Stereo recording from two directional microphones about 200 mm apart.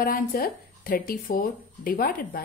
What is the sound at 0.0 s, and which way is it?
Speech, 45° left (ahead or behind).